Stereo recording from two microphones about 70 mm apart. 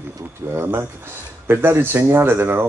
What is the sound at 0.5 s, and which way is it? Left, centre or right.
Speech, right.